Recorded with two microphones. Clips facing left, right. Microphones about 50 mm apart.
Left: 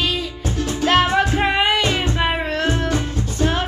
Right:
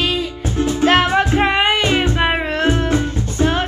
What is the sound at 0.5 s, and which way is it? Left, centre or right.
Music, right.